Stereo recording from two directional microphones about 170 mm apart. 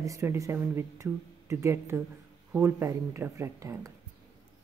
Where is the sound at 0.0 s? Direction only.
15° right (ahead or behind).